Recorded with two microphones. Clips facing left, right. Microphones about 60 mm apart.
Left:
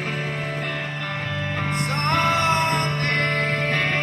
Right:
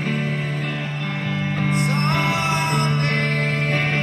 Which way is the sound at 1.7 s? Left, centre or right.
Centre.